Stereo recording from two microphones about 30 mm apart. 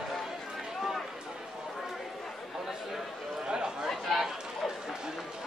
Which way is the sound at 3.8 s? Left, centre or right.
Centre.